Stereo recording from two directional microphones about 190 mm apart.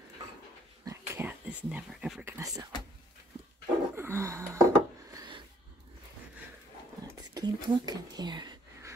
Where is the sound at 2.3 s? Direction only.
20° right (ahead or behind).